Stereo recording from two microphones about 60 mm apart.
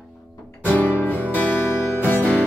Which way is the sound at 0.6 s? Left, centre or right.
Left.